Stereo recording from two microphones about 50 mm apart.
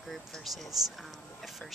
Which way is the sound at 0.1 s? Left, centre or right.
Centre.